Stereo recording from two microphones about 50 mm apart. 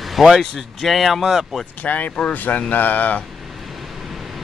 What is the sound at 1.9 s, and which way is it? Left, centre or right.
Speech, left.